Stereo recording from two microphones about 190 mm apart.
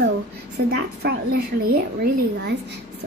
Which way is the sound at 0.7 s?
60° right (ahead or behind).